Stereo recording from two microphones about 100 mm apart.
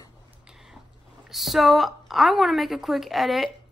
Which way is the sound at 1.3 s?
Centre (ahead or behind).